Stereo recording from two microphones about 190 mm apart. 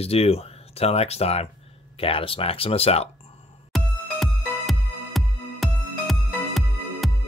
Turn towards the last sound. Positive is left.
turn(degrees=0)  # may be behind; listen again after turning